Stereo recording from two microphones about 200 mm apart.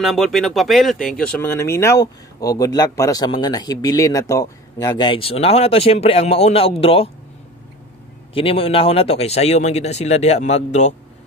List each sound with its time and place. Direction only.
0.0 s speech: centre (ahead or behind); by 7.1 s 30° left (ahead or behind)
8.4 s speech: 30° left (ahead or behind)